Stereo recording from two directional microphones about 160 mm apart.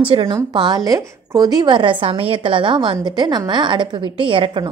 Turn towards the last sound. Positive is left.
turn(degrees=-30)  # may be behind; listen again after turning